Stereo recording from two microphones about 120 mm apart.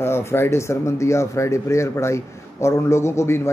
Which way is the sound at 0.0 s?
20° left (ahead or behind).